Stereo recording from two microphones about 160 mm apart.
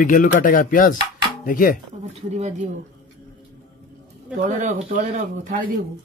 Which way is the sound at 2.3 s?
45° right (ahead or behind).